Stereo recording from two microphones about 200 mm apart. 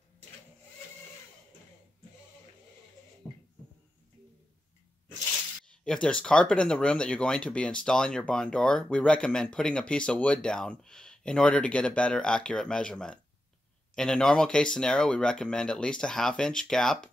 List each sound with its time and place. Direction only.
5.7 s speech: 5° left (ahead or behind)